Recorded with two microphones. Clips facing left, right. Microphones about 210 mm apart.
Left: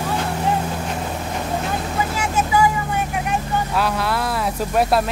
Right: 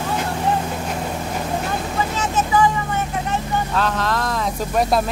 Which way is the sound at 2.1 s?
10° left (ahead or behind).